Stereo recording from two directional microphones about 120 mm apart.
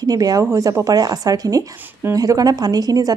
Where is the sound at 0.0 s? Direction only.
30° right (ahead or behind).